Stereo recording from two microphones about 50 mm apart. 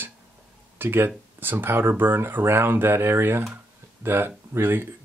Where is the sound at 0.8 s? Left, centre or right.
Right.